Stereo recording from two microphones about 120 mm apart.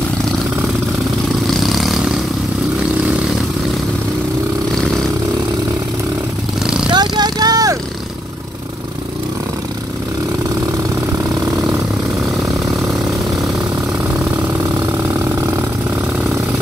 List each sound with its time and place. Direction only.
1.6 s vehicle: centre (ahead or behind)
6.9 s vehicle: 35° right (ahead or behind)